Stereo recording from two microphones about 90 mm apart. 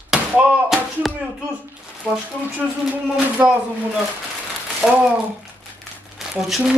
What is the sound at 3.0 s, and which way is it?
Speech, 10° right (ahead or behind).